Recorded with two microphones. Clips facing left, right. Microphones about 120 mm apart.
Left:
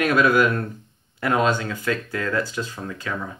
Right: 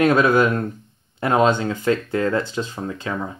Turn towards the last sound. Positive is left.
turn(degrees=-25)  # may be behind; listen again after turning